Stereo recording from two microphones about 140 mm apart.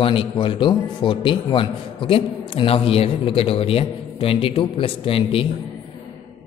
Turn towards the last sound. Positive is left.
turn(degrees=40)  # may be behind; listen again after turning